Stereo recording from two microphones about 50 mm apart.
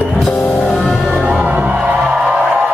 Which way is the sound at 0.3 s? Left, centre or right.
Left.